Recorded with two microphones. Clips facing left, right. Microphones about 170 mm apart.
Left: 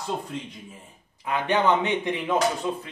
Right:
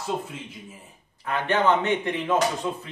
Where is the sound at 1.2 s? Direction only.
15° left (ahead or behind).